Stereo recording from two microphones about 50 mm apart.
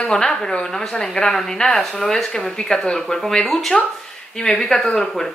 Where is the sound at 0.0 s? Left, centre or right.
Centre.